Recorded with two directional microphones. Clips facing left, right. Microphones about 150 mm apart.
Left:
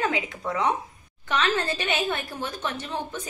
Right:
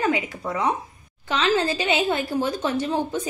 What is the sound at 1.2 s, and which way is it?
A woman's voice, 30° right (ahead or behind).